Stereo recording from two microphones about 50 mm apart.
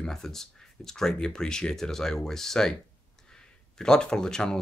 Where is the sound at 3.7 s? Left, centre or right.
Centre.